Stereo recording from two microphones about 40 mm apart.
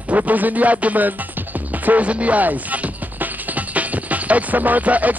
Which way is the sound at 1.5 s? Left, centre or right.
Right.